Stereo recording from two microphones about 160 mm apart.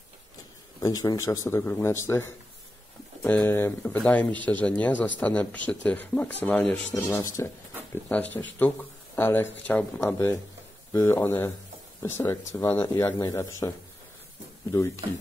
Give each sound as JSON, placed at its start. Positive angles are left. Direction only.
{"t": 0.7, "sound": "speech", "side_deg": 25}
{"t": 6.9, "sound": "speech", "side_deg": 20}